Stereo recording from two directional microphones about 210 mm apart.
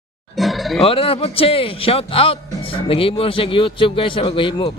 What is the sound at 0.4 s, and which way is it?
Music, centre (ahead or behind).